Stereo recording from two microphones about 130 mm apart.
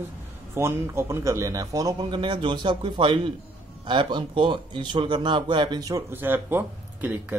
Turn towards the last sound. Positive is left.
turn(degrees=-15)  # may be behind; listen again after turning